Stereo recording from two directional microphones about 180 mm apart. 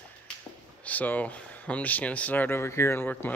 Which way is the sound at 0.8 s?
10° left (ahead or behind).